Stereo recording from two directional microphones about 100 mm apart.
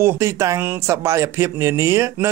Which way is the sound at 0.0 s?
30° right (ahead or behind).